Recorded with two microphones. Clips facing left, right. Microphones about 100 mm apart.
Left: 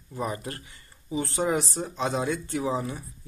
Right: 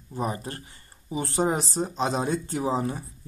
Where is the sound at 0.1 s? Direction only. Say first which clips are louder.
Right 1 dB; 30° right (ahead or behind).